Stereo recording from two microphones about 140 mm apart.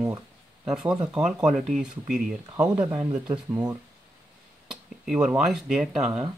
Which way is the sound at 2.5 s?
25° right (ahead or behind).